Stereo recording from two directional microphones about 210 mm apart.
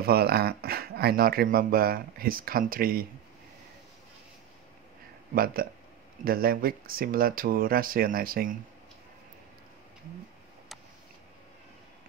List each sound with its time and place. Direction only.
0.0 s speech: 50° right (ahead or behind)
5.3 s speech: 45° right (ahead or behind)